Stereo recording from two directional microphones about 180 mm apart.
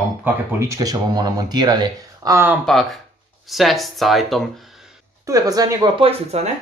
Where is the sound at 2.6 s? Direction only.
Centre (ahead or behind).